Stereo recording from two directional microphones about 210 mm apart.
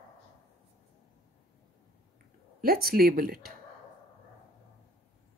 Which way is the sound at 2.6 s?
45° right (ahead or behind).